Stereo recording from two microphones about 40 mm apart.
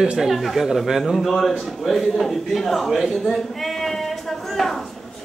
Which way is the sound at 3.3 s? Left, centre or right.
Centre.